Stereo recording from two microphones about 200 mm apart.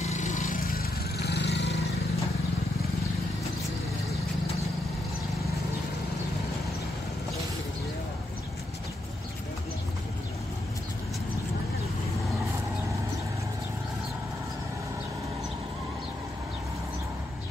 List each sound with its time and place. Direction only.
0.0 s vehicle: 35° left (ahead or behind); by 1.8 s 60° left (ahead or behind)